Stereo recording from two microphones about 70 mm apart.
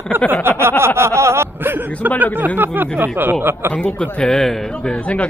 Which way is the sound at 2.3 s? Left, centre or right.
Right.